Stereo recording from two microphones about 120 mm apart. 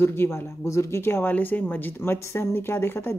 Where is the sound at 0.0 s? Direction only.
20° left (ahead or behind).